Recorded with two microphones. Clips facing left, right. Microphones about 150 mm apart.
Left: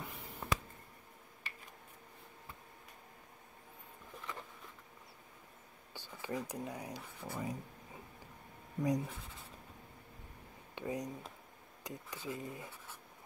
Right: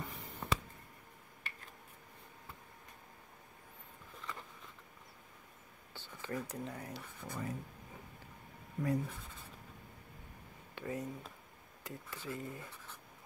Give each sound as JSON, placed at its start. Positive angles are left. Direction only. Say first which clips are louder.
{"t": 0.0, "sound": "a sound", "louder": "right 1 dB", "side_deg": 0}
{"t": 5.9, "sound": "speech", "louder": "left 1 dB", "side_deg": 15}
{"t": 8.8, "sound": "speech", "louder": "left 1 dB", "side_deg": 15}
{"t": 10.7, "sound": "speech", "louder": "left 1 dB", "side_deg": 15}